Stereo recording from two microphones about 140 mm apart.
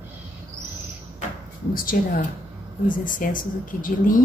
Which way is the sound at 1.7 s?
90° left.